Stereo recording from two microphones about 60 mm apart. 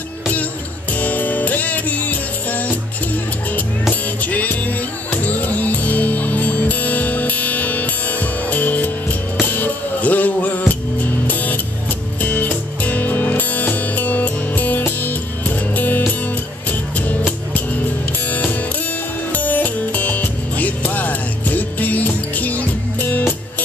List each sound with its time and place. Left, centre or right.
0.9 s music: left
3.9 s music: left
18.3 s music: left